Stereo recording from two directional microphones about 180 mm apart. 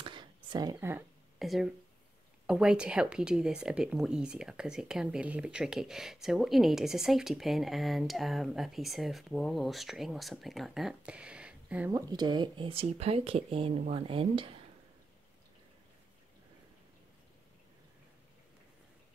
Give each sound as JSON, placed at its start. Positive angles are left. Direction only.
{"t": 0.0, "sound": "a sound", "side_deg": -25}
{"t": 1.4, "sound": "speech", "side_deg": 0}
{"t": 11.9, "sound": "speech", "side_deg": -25}